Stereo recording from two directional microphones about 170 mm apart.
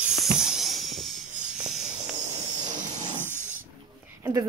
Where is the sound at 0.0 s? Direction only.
Centre (ahead or behind).